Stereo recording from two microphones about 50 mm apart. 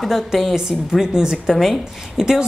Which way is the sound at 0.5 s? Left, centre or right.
Centre.